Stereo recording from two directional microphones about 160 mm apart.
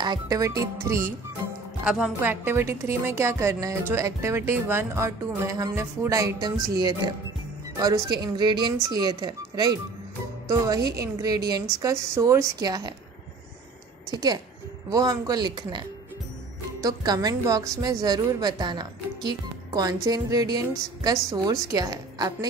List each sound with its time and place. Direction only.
0.0 s a woman's voice: 25° right (ahead or behind)
1.9 s a woman's voice: 5° right (ahead or behind); by 9.8 s 25° right (ahead or behind)
11.0 s a woman's voice: 20° right (ahead or behind)
14.1 s a woman's voice: 25° right (ahead or behind)
16.8 s a woman's voice: 25° right (ahead or behind)